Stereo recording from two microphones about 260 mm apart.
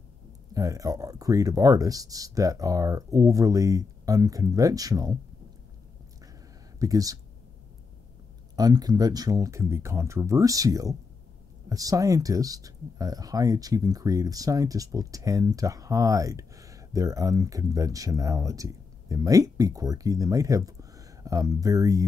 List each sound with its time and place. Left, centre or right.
0.6 s speech: centre
6.8 s speech: centre
8.5 s speech: centre